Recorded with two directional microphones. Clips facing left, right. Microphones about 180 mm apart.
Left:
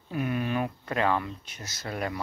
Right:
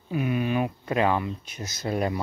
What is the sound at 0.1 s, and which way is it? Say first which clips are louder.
Speech: right 3 dB; 10° right (ahead or behind).